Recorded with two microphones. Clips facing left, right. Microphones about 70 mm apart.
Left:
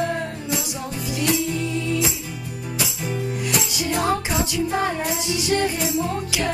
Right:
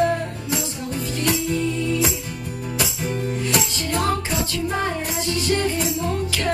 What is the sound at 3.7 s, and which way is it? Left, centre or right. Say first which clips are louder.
Music: left 1 dB; centre.